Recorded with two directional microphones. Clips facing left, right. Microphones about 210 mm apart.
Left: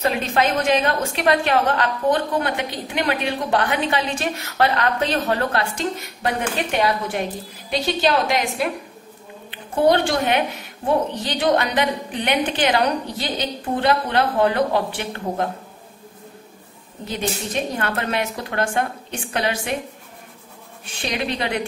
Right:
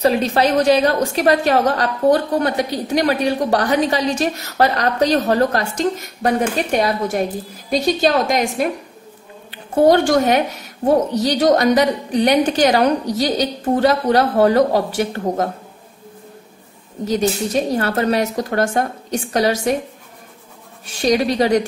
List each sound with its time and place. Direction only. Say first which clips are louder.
0.0 s a woman's voice: right 5 dB; 35° right (ahead or behind)
9.8 s a woman's voice: right 5 dB; 45° right (ahead or behind)
17.0 s a woman's voice: right 8 dB; 40° right (ahead or behind)
21.0 s a woman's voice: right 9 dB; 40° right (ahead or behind)